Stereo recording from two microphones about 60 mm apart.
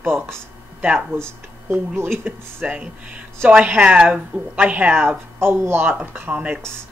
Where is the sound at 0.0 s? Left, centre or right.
Right.